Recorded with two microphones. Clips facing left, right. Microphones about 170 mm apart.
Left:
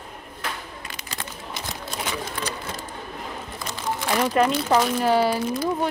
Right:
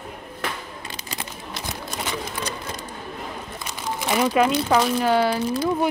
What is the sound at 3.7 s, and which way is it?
Speech, 5° right (ahead or behind).